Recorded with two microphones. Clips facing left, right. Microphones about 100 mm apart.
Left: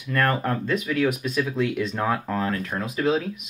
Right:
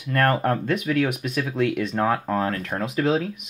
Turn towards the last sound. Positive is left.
turn(degrees=-65)  # may be behind; listen again after turning